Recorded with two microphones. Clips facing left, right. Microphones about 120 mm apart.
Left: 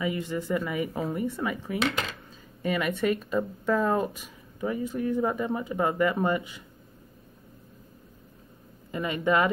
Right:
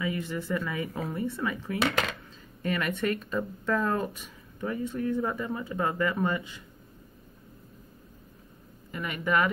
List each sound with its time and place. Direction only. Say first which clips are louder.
0.0 s speech: left 2 dB; 20° left (ahead or behind)
8.9 s speech: left 3 dB; 25° left (ahead or behind)